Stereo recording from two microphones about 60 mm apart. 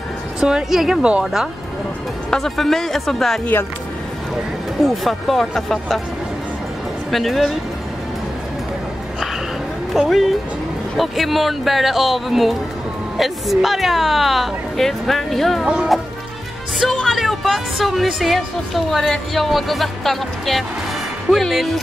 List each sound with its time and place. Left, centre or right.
0.4 s a woman's voice: centre
4.8 s speech: centre
7.1 s speech: centre
10.0 s speech: centre
15.6 s a woman's voice: centre
16.8 s speech: centre